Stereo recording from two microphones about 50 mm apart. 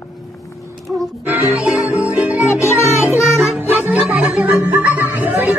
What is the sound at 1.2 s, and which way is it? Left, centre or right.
Music, right.